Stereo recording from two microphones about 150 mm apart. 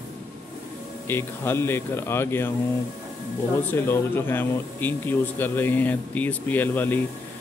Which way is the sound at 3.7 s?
15° left (ahead or behind).